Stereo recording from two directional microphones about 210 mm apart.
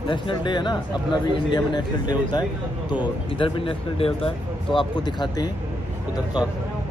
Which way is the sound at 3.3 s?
25° left (ahead or behind).